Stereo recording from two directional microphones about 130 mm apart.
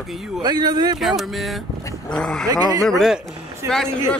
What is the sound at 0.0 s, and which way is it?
Speech, 5° right (ahead or behind).